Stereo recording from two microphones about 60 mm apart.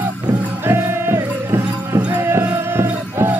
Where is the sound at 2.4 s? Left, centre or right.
Right.